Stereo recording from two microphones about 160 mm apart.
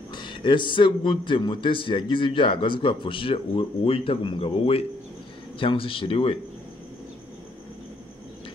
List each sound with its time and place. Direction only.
0.1 s a man's voice: 30° left (ahead or behind)